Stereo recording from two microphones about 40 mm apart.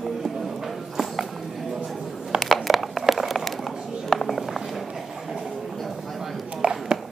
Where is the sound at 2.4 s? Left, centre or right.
Centre.